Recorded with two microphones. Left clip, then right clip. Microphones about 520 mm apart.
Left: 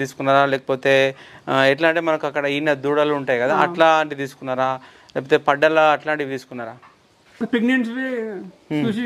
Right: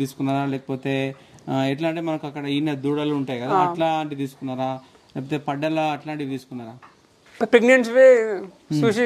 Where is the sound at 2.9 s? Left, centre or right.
Left.